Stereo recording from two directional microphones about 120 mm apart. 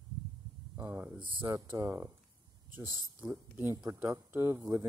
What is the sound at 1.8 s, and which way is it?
Speech, 20° right (ahead or behind).